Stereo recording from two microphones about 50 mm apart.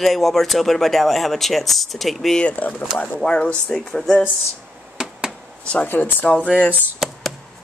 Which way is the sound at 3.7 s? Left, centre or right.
Centre.